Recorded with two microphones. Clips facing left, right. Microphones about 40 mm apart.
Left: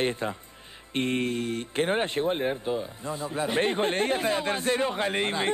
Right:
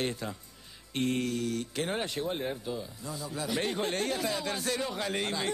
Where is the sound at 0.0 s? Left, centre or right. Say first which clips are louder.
Left 6 dB; left.